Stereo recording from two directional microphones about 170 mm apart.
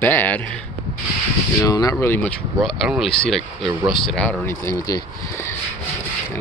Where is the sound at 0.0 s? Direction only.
10° left (ahead or behind).